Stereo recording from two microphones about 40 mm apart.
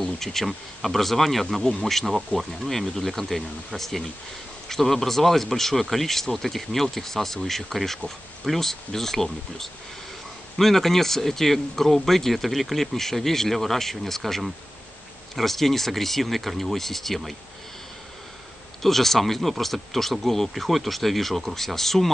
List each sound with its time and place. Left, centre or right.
0.0 s speech: centre
1.6 s speech: centre
1.9 s speech: centre
18.8 s speech: centre